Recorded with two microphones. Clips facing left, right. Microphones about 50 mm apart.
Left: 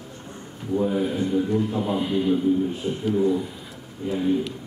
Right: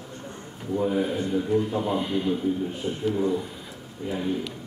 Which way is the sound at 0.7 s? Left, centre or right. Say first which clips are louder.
Left 1 dB; centre.